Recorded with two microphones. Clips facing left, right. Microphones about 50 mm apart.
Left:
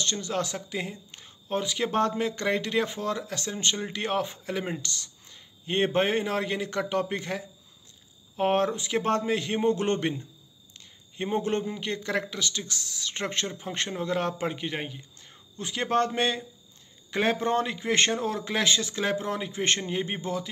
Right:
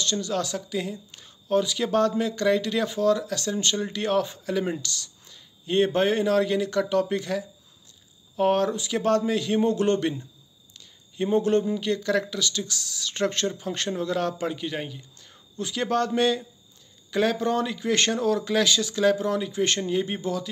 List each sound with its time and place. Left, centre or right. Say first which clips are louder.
0.0 s speech: right 2 dB; left